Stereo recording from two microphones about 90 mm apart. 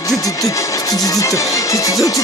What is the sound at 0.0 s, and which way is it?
Music, 40° left (ahead or behind).